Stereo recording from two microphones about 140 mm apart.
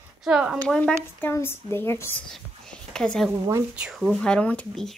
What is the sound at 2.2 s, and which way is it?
Whispering, 5° left (ahead or behind).